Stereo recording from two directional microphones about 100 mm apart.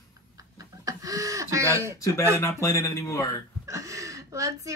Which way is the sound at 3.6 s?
35° right (ahead or behind).